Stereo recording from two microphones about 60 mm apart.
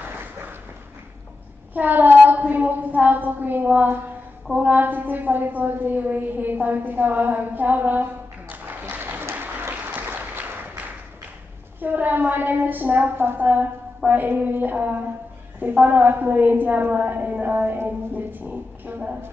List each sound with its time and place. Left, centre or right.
1.7 s a woman's voice: right
9.3 s applause: right
11.8 s a woman's voice: right